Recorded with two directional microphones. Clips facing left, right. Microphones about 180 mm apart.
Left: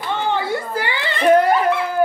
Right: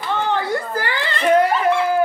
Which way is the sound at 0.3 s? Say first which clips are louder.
Left 1 dB; 15° left (ahead or behind).